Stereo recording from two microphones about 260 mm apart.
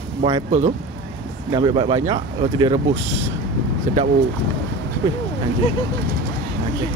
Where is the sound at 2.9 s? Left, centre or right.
Right.